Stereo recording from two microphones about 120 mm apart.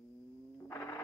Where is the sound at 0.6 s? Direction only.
20° left (ahead or behind).